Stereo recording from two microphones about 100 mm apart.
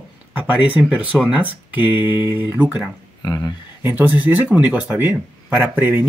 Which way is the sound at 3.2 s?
40° left (ahead or behind).